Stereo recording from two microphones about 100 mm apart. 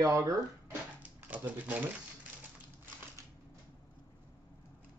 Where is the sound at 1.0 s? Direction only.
15° right (ahead or behind).